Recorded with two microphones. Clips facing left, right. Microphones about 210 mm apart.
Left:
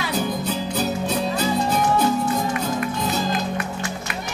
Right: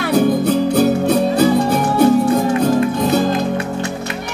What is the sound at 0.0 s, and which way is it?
Music, 60° right (ahead or behind).